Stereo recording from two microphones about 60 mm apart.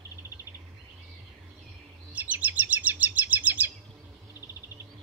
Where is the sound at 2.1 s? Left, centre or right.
Right.